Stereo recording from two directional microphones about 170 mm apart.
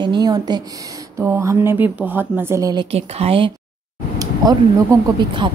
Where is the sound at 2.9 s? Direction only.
35° right (ahead or behind).